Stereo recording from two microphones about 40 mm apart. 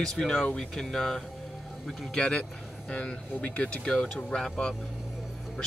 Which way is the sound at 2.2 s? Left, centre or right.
Left.